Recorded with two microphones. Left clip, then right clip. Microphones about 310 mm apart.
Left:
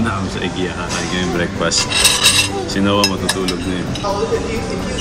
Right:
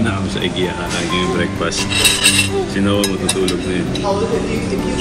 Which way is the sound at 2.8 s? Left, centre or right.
Left.